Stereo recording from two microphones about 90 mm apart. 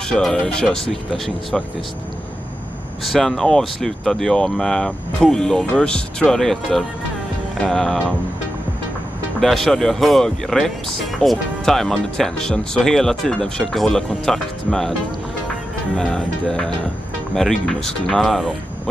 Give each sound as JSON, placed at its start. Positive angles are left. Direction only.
{"t": 0.1, "sound": "speech", "side_deg": 10}
{"t": 3.1, "sound": "speech", "side_deg": 0}
{"t": 9.4, "sound": "speech", "side_deg": 0}
{"t": 16.0, "sound": "speech", "side_deg": 5}